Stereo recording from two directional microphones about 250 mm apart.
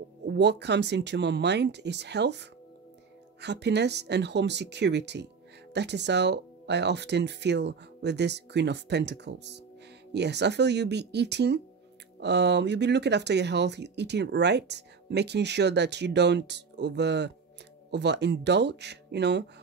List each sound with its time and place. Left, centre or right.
0.3 s speech: right